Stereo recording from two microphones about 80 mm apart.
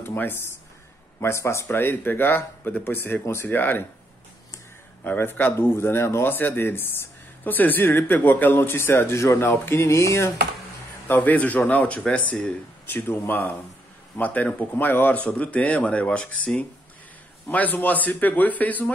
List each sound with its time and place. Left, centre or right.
0.0 s a sound: left
1.2 s speech: left
5.0 s speech: left
11.1 s speech: left
12.8 s speech: left